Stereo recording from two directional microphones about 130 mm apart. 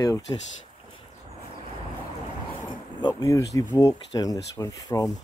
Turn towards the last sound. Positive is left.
turn(degrees=30)  # may be behind; listen again after turning